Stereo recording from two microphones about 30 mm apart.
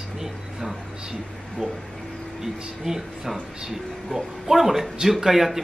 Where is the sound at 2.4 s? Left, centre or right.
Centre.